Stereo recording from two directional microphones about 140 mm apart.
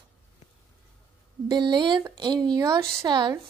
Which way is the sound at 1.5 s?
35° right (ahead or behind).